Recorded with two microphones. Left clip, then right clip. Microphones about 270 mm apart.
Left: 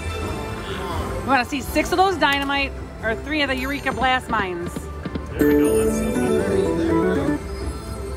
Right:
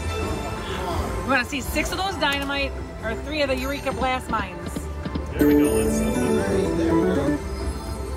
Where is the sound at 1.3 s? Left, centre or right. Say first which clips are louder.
Left 3 dB; left.